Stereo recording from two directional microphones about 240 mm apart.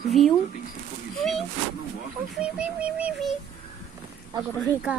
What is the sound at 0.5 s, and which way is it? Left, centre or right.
Speech, left.